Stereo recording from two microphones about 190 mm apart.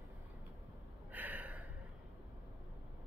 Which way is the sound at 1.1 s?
10° right (ahead or behind).